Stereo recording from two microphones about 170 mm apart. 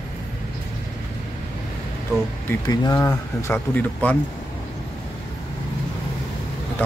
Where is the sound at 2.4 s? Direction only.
20° left (ahead or behind).